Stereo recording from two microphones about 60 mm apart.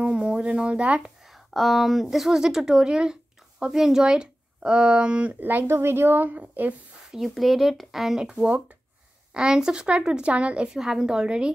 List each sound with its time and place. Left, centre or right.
0.0 s speech: centre
1.3 s speech: centre; by 6.7 s right
7.1 s speech: centre